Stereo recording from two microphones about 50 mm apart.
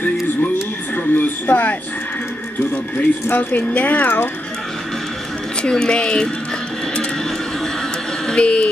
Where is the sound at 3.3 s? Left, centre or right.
Left.